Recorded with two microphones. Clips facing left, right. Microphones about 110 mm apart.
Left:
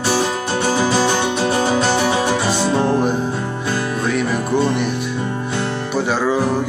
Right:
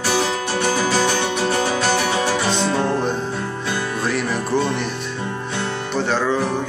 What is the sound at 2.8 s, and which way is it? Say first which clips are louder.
Music: left 4 dB; 10° left (ahead or behind).